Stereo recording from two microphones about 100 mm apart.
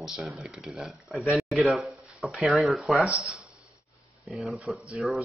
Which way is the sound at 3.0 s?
10° right (ahead or behind).